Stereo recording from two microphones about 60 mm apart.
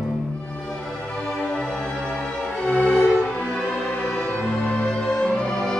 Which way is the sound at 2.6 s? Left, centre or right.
Centre.